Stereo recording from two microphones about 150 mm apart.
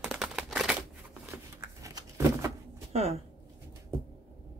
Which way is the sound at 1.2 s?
20° right (ahead or behind).